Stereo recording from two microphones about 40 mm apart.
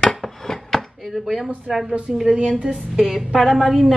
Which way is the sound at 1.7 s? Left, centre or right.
Centre.